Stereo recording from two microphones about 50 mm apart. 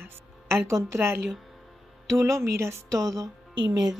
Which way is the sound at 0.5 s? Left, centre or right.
Right.